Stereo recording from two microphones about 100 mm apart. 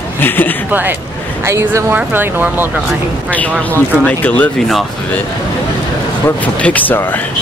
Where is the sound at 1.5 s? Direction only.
30° right (ahead or behind).